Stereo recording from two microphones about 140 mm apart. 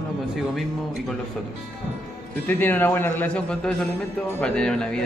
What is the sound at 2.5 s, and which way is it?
A man's voice, 15° left (ahead or behind).